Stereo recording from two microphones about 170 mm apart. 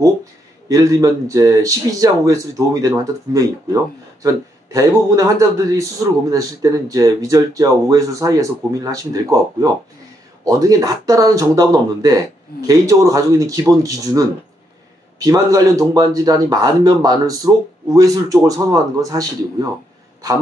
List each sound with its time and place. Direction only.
0.0 s speech: 20° right (ahead or behind)
6.3 s speech: 20° right (ahead or behind)